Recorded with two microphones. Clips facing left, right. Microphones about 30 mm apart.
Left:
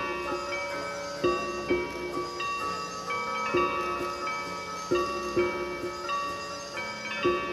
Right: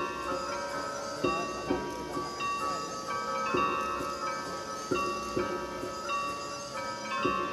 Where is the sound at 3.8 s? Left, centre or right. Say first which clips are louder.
Left 2 dB; left.